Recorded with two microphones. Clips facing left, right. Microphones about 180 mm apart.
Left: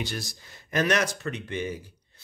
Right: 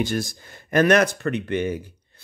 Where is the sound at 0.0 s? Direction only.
50° right (ahead or behind).